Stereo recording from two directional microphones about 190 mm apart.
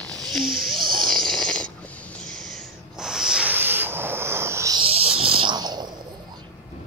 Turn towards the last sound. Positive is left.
turn(degrees=-20)  # may be behind; listen again after turning